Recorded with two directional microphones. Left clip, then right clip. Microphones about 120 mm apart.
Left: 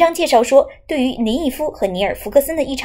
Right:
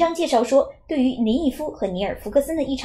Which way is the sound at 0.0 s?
25° left (ahead or behind).